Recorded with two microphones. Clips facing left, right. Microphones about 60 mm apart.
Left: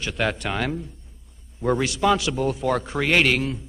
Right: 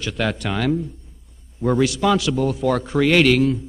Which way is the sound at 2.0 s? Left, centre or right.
Left.